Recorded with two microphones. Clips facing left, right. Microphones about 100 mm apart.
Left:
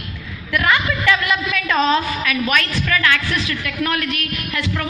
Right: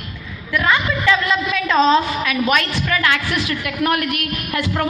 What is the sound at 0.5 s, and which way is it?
A woman's voice, 20° right (ahead or behind).